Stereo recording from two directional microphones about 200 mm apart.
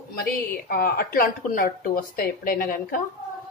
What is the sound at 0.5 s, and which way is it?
Speech, 50° left (ahead or behind).